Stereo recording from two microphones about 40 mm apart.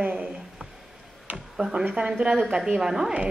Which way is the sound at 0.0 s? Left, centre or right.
Right.